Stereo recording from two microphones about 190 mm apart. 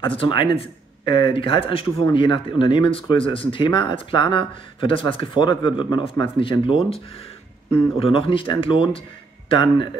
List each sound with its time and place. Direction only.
0.0 s speech: 25° left (ahead or behind)
8.0 s speech: 30° left (ahead or behind)